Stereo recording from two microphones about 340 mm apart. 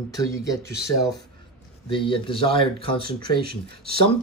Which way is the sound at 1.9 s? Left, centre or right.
Centre.